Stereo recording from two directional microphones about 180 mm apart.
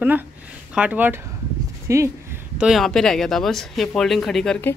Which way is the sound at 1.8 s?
15° right (ahead or behind).